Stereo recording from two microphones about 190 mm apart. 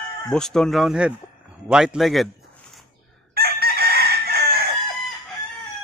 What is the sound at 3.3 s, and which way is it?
Chicken, 55° right (ahead or behind).